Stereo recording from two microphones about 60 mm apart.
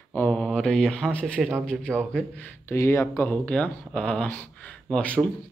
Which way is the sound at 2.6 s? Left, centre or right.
Left.